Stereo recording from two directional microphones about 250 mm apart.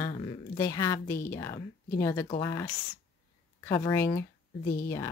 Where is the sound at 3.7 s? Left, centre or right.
Centre.